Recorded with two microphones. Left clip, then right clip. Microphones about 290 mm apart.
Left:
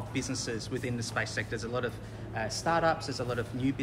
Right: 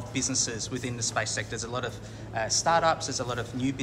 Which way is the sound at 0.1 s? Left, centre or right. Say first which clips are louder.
Right 6 dB; centre.